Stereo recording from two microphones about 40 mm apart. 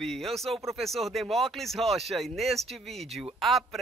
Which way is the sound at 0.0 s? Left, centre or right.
Centre.